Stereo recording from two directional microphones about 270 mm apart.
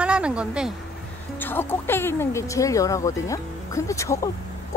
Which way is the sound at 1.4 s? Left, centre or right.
Centre.